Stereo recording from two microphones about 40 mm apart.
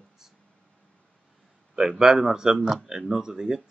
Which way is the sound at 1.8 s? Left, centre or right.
Centre.